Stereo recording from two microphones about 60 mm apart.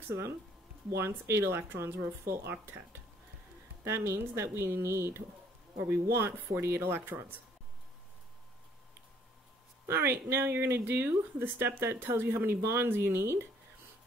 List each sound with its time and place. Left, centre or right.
0.1 s speech: right
3.8 s speech: right
9.8 s speech: right